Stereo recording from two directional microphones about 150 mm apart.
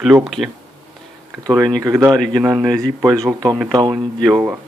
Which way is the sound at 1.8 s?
20° right (ahead or behind).